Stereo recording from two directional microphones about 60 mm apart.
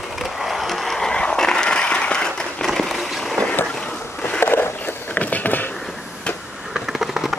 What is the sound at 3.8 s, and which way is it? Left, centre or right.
Boat, centre.